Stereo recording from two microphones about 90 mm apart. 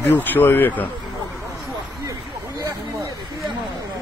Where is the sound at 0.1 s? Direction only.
20° left (ahead or behind).